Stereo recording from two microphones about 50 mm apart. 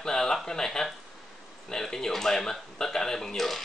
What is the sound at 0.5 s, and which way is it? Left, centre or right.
Speech, centre.